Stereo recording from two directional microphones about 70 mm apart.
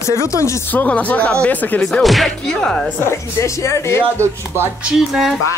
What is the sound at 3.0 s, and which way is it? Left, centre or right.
A woman's voice, left.